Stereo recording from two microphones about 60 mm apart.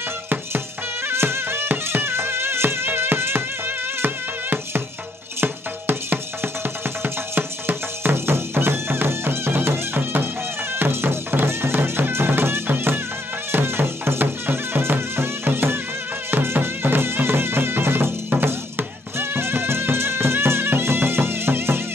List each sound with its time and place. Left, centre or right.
1.0 s music: right